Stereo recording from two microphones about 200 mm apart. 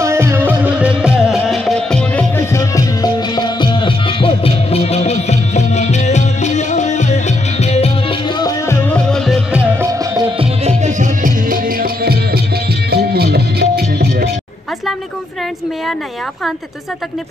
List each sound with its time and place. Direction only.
0.0 s music: 15° right (ahead or behind)
9.8 s music: 25° right (ahead or behind); by 14.3 s 55° right (ahead or behind)